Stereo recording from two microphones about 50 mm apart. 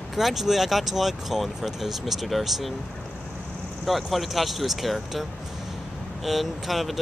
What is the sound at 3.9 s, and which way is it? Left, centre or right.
Speech, centre.